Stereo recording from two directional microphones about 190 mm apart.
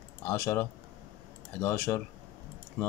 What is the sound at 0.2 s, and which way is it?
Speech, 15° left (ahead or behind).